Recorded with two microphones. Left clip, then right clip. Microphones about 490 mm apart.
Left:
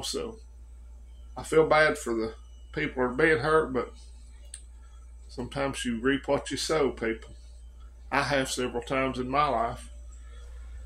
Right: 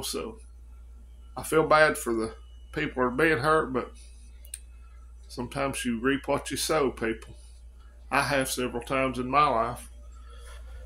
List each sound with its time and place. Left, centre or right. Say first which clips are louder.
0.0 s speech: left 1 dB; right
1.3 s speech: even; right
5.3 s speech: right 1 dB; right